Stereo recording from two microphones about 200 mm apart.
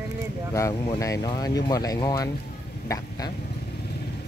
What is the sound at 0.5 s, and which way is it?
Speech, 15° left (ahead or behind).